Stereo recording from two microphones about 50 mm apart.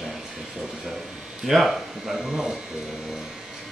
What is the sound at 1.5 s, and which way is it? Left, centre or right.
Speech, centre.